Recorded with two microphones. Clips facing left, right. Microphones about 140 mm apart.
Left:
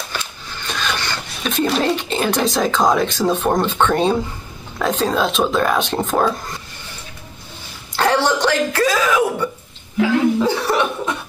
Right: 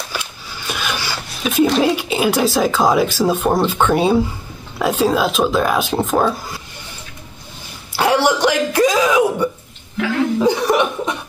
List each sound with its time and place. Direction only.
0.1 s speech: 10° right (ahead or behind)
7.9 s a sound: 10° right (ahead or behind)
10.4 s chuckle: 15° right (ahead or behind)